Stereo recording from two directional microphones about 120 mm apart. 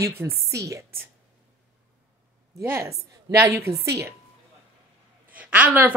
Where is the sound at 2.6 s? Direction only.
20° right (ahead or behind).